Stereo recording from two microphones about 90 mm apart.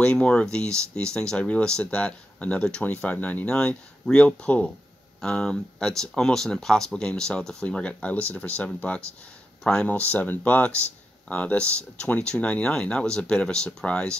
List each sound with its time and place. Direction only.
0.0 s speech: 10° left (ahead or behind)